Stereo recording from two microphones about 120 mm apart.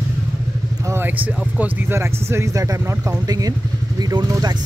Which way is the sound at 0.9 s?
15° right (ahead or behind).